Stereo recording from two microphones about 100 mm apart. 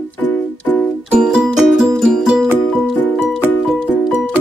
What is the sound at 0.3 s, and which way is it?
Music, 15° left (ahead or behind).